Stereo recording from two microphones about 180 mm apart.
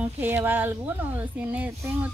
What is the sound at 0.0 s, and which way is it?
A woman's voice, 10° right (ahead or behind).